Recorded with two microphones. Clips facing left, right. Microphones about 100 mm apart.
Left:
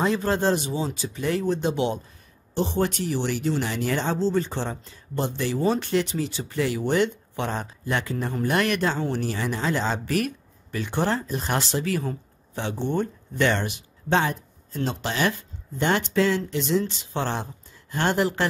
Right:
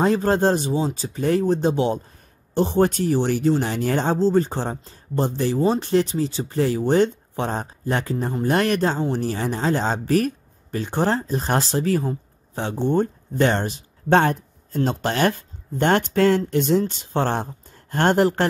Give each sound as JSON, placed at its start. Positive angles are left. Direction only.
{"t": 0.0, "sound": "speech", "side_deg": -40}
{"t": 14.0, "sound": "speech", "side_deg": -50}